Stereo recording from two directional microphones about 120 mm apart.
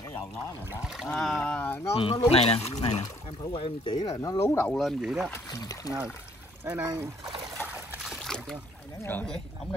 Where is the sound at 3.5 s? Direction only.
50° left (ahead or behind).